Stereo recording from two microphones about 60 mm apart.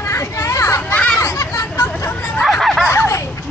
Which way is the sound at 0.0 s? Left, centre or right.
Left.